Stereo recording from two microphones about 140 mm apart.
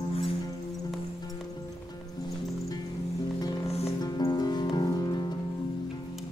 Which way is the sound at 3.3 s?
25° left (ahead or behind).